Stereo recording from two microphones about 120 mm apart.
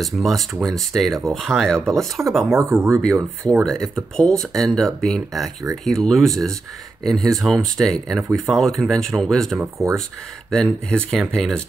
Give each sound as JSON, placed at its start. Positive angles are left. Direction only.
{"t": 0.0, "sound": "speech", "side_deg": 0}
{"t": 2.5, "sound": "speech", "side_deg": -20}
{"t": 3.6, "sound": "speech", "side_deg": 5}